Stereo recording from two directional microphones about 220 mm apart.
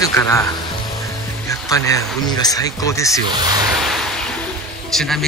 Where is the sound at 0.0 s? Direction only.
15° left (ahead or behind).